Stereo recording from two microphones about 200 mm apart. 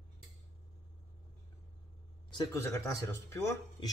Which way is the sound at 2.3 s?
15° left (ahead or behind).